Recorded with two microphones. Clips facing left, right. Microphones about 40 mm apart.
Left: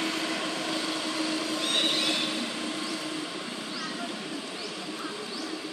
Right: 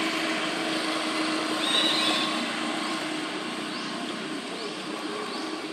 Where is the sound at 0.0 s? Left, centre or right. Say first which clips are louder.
Right 3 dB; centre.